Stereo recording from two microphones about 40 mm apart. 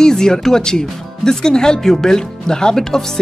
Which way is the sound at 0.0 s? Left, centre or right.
Centre.